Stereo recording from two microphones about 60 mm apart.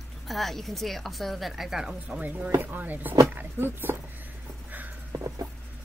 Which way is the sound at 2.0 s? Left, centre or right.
Right.